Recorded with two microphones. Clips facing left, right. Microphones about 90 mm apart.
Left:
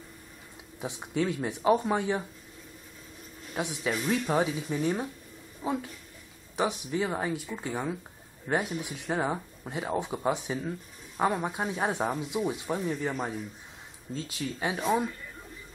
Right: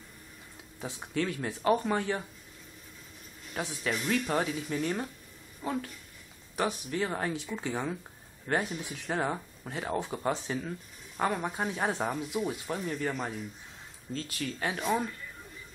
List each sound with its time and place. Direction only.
0.7 s speech: 20° left (ahead or behind)
3.5 s speech: 15° left (ahead or behind)
14.1 s speech: 20° left (ahead or behind)